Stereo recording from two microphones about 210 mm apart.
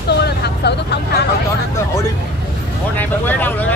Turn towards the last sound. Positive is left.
turn(degrees=10)  # may be behind; listen again after turning